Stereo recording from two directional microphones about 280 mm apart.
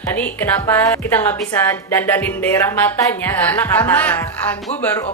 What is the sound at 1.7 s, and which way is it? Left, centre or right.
Speech, centre.